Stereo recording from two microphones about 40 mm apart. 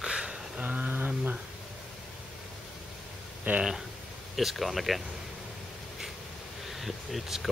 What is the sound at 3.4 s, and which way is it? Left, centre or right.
Speech, right.